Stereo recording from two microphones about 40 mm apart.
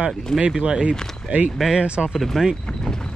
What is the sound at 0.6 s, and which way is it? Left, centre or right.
Speech, right.